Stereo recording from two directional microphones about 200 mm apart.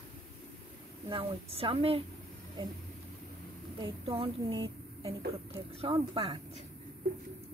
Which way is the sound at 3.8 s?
25° right (ahead or behind).